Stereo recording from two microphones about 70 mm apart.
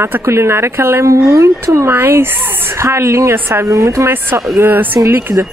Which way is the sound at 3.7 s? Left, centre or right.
Right.